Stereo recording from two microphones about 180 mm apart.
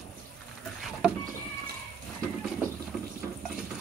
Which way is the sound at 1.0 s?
5° right (ahead or behind).